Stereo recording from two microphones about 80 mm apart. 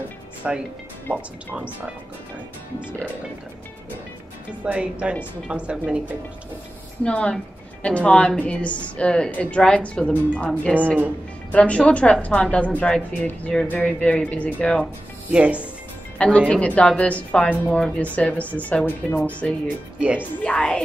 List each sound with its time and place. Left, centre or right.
0.4 s speech: centre
4.6 s speech: centre
7.0 s speech: centre
15.3 s speech: centre
16.3 s speech: centre